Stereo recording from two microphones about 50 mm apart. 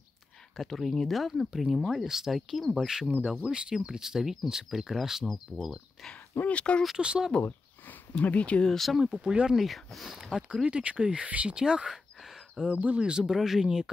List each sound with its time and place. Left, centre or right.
0.6 s speech: centre
2.7 s speech: centre
6.0 s speech: centre
6.5 s speech: left
7.0 s speech: centre
7.4 s a sound: left
8.2 s speech: left
8.6 s speech: centre
9.0 s speech: centre
9.6 s speech: centre
10.3 s speech: centre
11.9 s a sound: centre
12.6 s speech: right
13.2 s speech: centre